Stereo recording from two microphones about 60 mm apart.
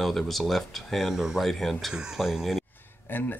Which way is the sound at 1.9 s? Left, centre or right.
Centre.